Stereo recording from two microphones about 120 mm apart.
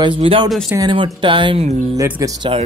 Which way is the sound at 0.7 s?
35° right (ahead or behind).